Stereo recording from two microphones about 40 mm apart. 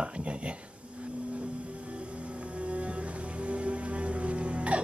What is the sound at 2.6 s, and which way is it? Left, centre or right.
Music, right.